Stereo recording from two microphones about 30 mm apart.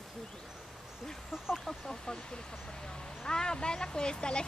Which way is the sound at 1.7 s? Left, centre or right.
Left.